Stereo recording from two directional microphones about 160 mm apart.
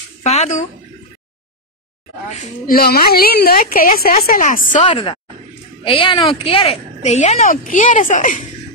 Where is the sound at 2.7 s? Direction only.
70° left (ahead or behind).